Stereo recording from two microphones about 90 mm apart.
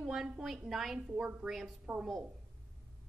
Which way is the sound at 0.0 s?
5° right (ahead or behind).